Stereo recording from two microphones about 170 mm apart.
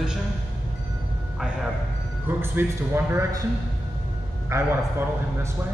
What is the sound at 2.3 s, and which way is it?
A man's voice, 15° right (ahead or behind).